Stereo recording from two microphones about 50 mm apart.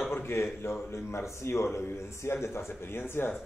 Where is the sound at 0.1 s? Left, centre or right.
Left.